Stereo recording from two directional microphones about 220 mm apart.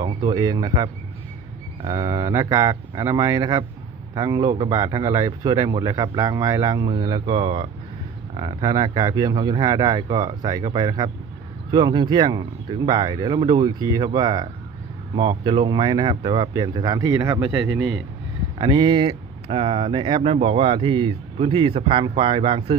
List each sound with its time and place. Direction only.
0.0 s speech: 20° right (ahead or behind)